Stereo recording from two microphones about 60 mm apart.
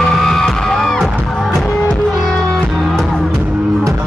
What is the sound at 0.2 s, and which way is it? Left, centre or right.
Music, centre.